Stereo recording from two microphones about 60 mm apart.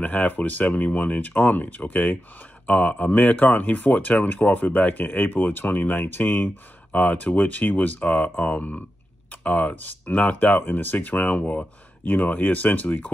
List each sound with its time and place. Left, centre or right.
0.0 s speech: left